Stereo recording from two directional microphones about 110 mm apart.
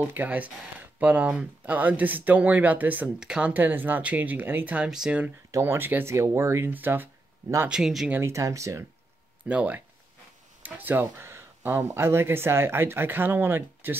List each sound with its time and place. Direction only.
0.0 s speech: 15° right (ahead or behind)
5.5 s speech: 25° right (ahead or behind)
7.7 s speech: 5° right (ahead or behind)
8.1 s speech: 25° right (ahead or behind)
9.5 s speech: 10° right (ahead or behind)
10.6 s a sound: 15° right (ahead or behind)
11.8 s speech: 25° right (ahead or behind)